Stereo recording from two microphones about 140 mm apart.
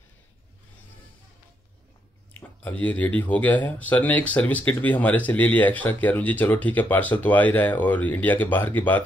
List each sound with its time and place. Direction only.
2.6 s speech: 10° left (ahead or behind)